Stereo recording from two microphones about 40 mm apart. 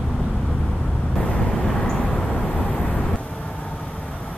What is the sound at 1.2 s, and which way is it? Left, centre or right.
Vehicle, left.